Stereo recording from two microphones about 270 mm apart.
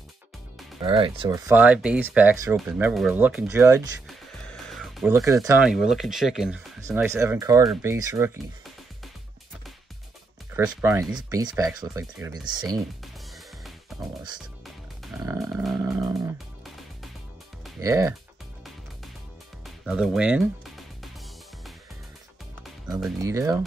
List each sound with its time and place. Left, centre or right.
0.8 s speech: centre
1.5 s speech: centre
4.5 s music: centre
5.6 s speech: centre
10.5 s speech: centre
15.1 s a sound: centre
15.4 s speech: centre
17.7 s speech: centre
19.6 s music: centre
23.2 s speech: centre